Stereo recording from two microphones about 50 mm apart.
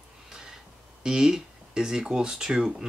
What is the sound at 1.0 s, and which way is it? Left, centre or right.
Speech, centre.